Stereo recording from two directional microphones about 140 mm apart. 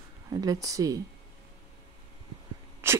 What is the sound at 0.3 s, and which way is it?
Speech, 30° right (ahead or behind).